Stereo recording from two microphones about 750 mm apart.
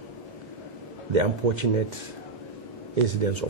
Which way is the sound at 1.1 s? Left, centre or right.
Right.